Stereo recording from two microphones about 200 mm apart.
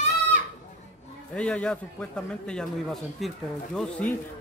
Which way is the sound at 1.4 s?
5° left (ahead or behind).